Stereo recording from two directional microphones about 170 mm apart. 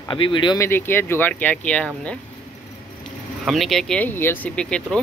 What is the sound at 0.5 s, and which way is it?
Speech, 15° left (ahead or behind).